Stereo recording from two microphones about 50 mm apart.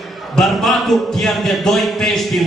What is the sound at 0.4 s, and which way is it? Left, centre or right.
A man's voice, centre.